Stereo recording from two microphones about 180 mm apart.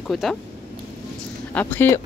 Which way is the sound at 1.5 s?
10° left (ahead or behind).